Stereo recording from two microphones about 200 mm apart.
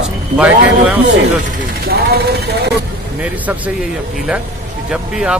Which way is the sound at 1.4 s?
50° right (ahead or behind).